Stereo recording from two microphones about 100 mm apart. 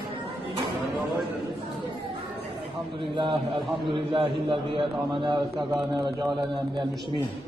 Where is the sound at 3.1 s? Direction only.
55° right (ahead or behind).